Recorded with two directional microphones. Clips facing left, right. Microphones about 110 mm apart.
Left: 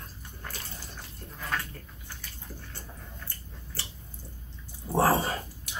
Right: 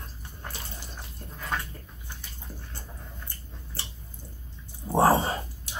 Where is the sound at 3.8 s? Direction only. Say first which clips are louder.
Right 1 dB; 25° right (ahead or behind).